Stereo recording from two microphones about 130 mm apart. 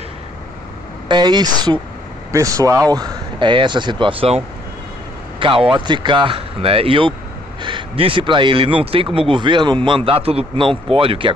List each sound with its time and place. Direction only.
1.0 s speech: 35° right (ahead or behind)
5.4 s a man's voice: 40° right (ahead or behind)